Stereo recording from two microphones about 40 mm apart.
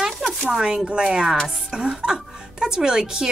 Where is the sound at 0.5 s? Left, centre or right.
Right.